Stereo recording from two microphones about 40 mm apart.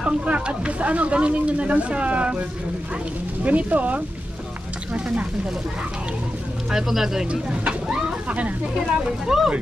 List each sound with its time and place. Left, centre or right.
0.2 s speech: right
3.4 s speech: right
6.7 s speech: centre
7.2 s speech: right
8.7 s speech: centre